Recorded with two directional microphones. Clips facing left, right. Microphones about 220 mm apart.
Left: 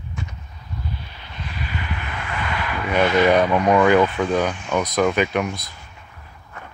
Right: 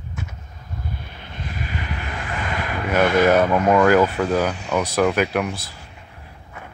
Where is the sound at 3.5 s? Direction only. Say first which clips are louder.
Even; 5° right (ahead or behind).